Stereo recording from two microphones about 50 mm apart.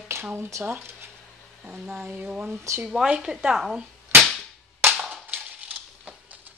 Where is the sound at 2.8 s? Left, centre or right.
Centre.